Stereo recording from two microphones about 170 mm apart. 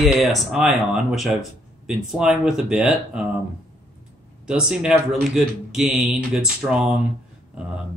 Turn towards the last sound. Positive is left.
turn(degrees=-5)  # may be behind; listen again after turning